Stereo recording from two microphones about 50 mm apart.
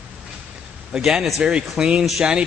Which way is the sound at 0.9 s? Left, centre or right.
Centre.